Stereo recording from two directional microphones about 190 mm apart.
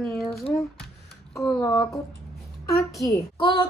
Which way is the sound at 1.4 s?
5° left (ahead or behind).